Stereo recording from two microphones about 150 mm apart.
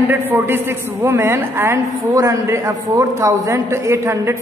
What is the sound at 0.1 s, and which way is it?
A man's voice, 15° right (ahead or behind).